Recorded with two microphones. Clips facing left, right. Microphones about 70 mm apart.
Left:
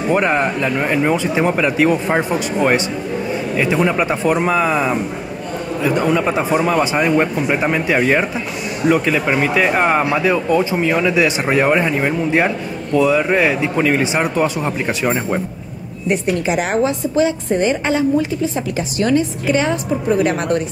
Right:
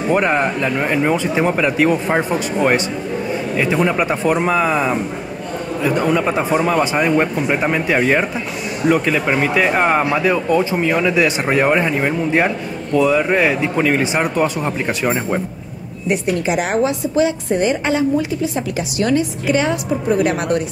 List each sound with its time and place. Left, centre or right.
0.1 s speech: centre
18.9 s a woman's voice: left